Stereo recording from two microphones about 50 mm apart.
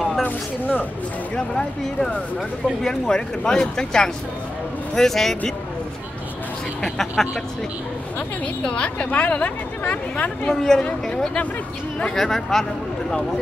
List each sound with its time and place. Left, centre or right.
0.2 s speech: left
1.3 s speech: centre
6.8 s speech: centre
8.6 s a woman's voice: left
10.5 s speech: centre